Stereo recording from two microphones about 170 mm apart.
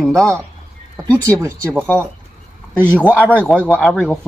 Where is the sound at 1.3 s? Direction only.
15° right (ahead or behind).